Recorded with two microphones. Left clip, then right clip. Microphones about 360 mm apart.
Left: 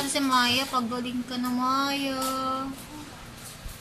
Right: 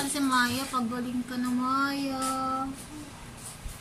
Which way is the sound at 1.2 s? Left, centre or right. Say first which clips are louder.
Left 3 dB; centre.